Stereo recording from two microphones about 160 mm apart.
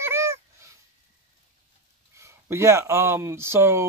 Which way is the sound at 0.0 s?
15° right (ahead or behind).